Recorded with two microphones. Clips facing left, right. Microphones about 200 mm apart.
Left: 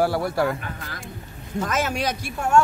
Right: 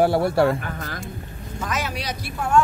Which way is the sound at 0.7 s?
40° right (ahead or behind).